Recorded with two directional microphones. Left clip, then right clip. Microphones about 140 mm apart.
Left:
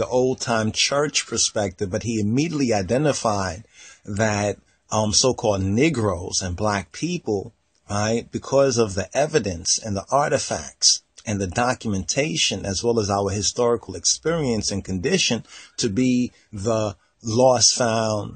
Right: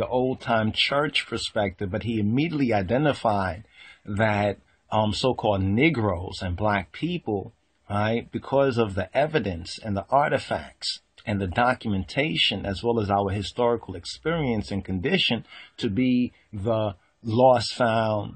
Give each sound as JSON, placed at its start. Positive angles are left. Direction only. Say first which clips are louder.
{"t": 0.0, "sound": "speech", "louder": "left 4 dB", "side_deg": 55}